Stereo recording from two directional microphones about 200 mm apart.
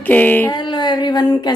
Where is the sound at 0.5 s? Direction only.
20° left (ahead or behind).